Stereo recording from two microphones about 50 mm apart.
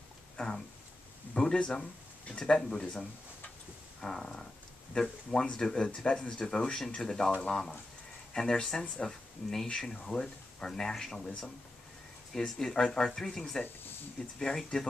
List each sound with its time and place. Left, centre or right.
0.4 s speech: centre
4.0 s a sound: centre
4.9 s speech: centre